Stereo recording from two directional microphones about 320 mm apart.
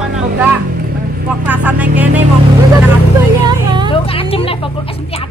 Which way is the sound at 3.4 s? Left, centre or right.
Centre.